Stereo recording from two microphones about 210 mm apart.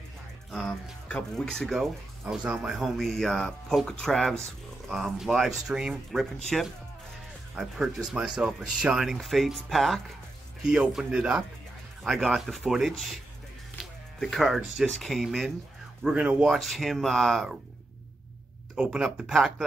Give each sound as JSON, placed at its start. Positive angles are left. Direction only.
{"t": 0.5, "sound": "speech", "side_deg": 0}
{"t": 18.8, "sound": "speech", "side_deg": -5}